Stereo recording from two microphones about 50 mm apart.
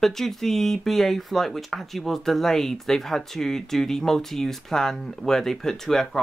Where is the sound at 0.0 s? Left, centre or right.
Centre.